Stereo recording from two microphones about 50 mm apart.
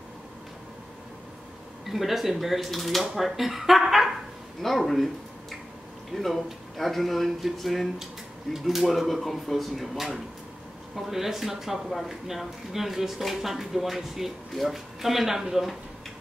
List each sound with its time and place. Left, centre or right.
1.9 s speech: centre
6.1 s speech: centre